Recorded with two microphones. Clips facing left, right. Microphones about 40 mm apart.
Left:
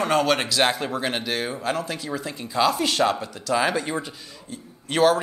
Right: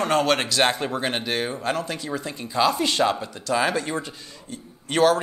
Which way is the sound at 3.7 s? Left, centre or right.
Centre.